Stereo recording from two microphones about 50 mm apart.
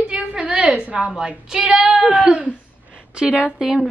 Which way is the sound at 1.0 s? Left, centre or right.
Centre.